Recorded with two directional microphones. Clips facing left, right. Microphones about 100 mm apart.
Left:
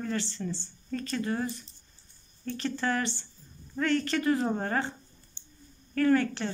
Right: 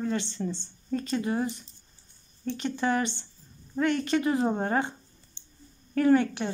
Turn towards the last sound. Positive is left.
turn(degrees=-20)  # may be behind; listen again after turning